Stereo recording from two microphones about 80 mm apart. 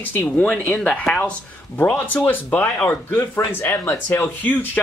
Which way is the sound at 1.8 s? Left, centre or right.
Left.